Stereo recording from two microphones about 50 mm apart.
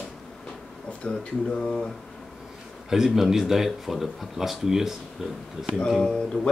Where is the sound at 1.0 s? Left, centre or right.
Centre.